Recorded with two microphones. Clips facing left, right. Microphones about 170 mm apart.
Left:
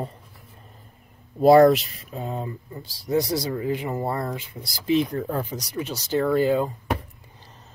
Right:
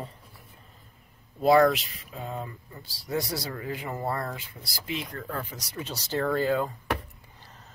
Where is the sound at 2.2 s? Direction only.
25° left (ahead or behind).